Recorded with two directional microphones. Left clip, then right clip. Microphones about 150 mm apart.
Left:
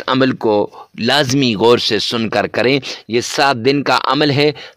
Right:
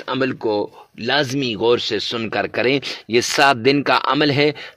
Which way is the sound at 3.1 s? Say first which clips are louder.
Even; 10° left (ahead or behind).